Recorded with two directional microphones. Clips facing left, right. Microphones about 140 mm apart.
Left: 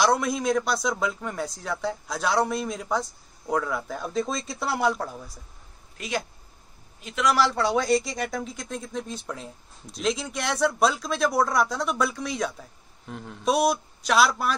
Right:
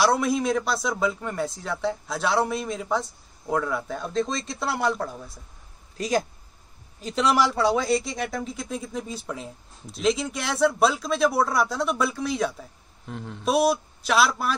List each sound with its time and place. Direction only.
0.0 s speech: 5° right (ahead or behind)
5.9 s a man's voice: 40° right (ahead or behind)
7.3 s speech: 10° right (ahead or behind)